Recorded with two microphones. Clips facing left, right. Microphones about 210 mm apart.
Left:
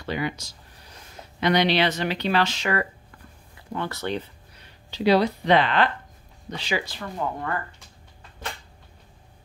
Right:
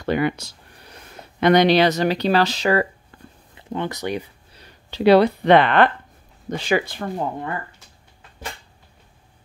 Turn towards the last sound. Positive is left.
turn(degrees=-20)  # may be behind; listen again after turning